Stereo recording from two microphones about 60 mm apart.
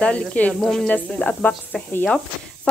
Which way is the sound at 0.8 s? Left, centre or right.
Left.